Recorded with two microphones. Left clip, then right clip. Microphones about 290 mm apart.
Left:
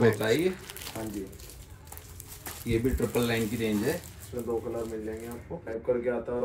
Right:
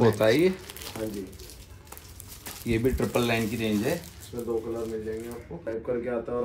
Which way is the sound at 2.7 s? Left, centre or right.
Centre.